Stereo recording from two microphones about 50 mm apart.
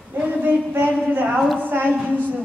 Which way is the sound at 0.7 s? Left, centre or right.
Right.